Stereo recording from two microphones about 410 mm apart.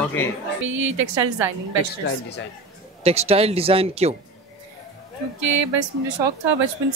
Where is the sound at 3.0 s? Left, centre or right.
Centre.